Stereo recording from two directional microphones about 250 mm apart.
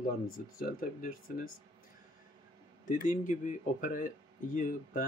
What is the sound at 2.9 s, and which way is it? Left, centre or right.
Speech, left.